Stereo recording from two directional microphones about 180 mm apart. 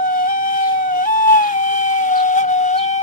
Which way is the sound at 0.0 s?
50° left (ahead or behind).